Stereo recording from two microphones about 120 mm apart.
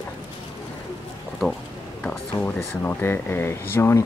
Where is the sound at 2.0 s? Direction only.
10° left (ahead or behind).